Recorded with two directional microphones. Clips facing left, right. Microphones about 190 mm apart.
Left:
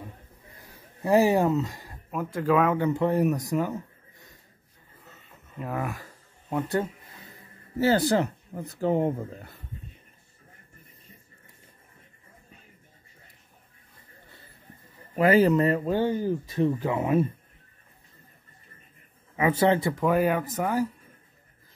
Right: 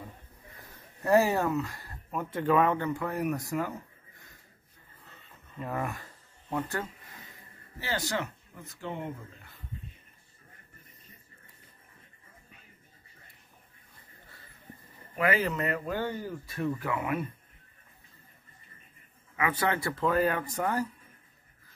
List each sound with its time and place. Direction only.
1.0 s speech: 15° left (ahead or behind)
2.0 s speech: centre (ahead or behind)
2.8 s speech: 20° left (ahead or behind)
5.6 s speech: 5° left (ahead or behind)
6.5 s speech: 20° left (ahead or behind)
7.7 s speech: 40° left (ahead or behind)
15.1 s speech: 35° left (ahead or behind)
19.3 s speech: 25° left (ahead or behind)
20.0 s speech: 15° left (ahead or behind)